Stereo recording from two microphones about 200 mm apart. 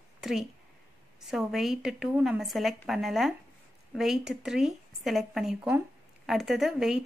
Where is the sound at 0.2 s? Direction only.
Centre (ahead or behind).